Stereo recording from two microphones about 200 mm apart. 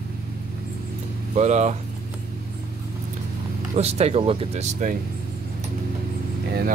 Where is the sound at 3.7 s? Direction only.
30° right (ahead or behind).